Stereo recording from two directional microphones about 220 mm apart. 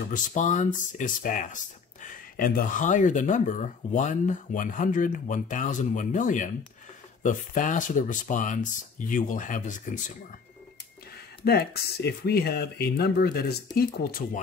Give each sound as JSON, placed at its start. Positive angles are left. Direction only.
{"t": 0.1, "sound": "speech", "side_deg": 35}
{"t": 11.4, "sound": "speech", "side_deg": 45}